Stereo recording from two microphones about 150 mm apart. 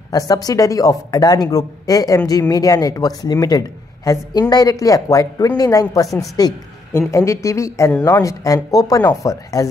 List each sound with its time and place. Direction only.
0.3 s a woman's voice: 25° left (ahead or behind)